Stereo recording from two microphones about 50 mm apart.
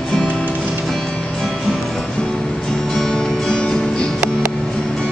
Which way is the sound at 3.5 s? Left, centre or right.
Centre.